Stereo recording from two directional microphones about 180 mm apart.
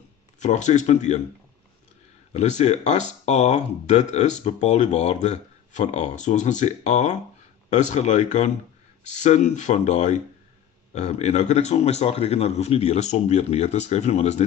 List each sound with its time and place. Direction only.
0.4 s speech: 40° left (ahead or behind)
2.3 s speech: 40° left (ahead or behind)